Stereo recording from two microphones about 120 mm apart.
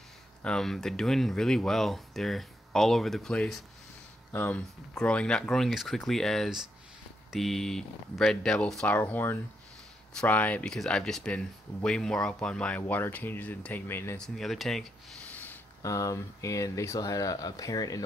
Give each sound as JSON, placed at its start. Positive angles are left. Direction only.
{"t": 0.4, "sound": "speech", "side_deg": 5}
{"t": 4.3, "sound": "speech", "side_deg": 15}
{"t": 14.1, "sound": "speech", "side_deg": 5}
{"t": 15.3, "sound": "a sound", "side_deg": 15}
{"t": 15.8, "sound": "speech", "side_deg": 25}